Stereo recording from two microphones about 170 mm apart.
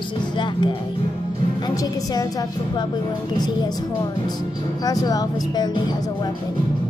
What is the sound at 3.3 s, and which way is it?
Speech, 25° left (ahead or behind).